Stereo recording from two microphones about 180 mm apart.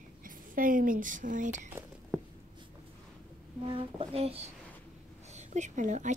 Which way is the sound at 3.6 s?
30° right (ahead or behind).